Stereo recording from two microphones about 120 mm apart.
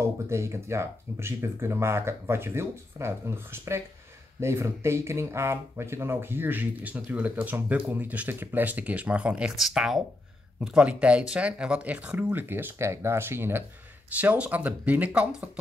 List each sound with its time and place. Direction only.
0.3 s speech: 25° right (ahead or behind)